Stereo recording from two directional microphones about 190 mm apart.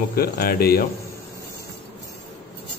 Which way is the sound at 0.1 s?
50° left (ahead or behind).